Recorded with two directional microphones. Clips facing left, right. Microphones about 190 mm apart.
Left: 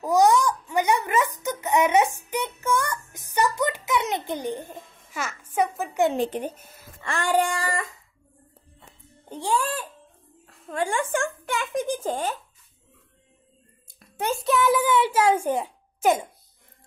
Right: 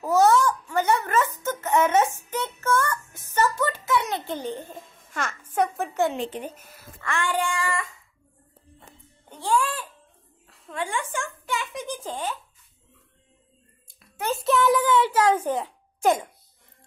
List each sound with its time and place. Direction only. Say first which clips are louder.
0.0 s a child's voice: even; 15° left (ahead or behind)
6.1 s child singing: left 5 dB; 40° left (ahead or behind)
9.6 s a child's voice: right 1 dB; 45° left (ahead or behind)
14.3 s a child's voice: right 1 dB; centre (ahead or behind)